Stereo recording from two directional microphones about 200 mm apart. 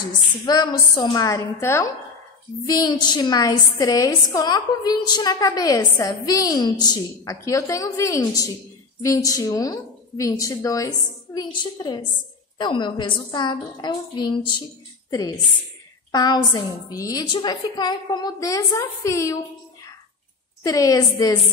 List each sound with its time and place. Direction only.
0.0 s a woman's voice: 20° left (ahead or behind)
20.6 s a woman's voice: 15° left (ahead or behind)